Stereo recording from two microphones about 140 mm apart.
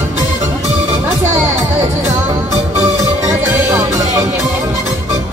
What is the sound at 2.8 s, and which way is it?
Music, 25° right (ahead or behind).